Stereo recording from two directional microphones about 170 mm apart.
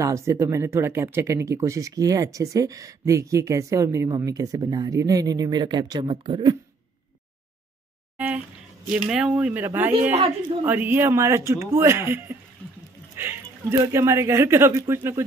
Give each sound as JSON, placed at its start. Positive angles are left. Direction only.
{"t": 0.0, "sound": "speech", "side_deg": -15}
{"t": 8.9, "sound": "a man's voice", "side_deg": -5}
{"t": 13.1, "sound": "a sound", "side_deg": -15}
{"t": 13.7, "sound": "a man's voice", "side_deg": -15}